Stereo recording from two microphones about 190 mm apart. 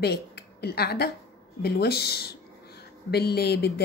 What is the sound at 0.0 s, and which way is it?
A woman's voice, 60° left (ahead or behind).